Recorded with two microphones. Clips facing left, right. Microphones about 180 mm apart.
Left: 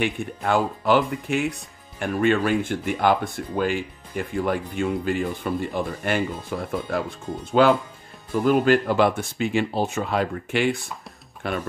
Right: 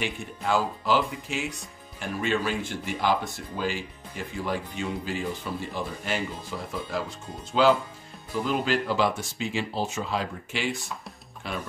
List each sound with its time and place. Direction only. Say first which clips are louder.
0.0 s speech: left 6 dB; 60° left (ahead or behind)